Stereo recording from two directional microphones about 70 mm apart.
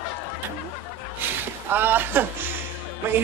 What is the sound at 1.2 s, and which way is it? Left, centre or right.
Speech, right.